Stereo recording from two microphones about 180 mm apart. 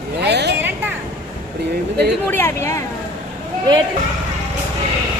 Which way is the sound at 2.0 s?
10° left (ahead or behind).